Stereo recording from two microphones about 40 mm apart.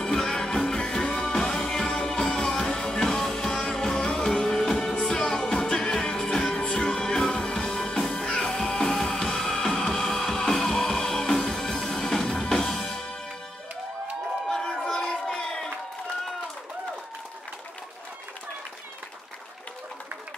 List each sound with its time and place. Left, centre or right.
0.0 s music: centre
14.5 s a sound: centre
14.9 s crowd: centre